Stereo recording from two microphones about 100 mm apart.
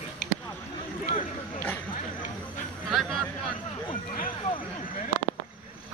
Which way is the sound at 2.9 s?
Centre (ahead or behind).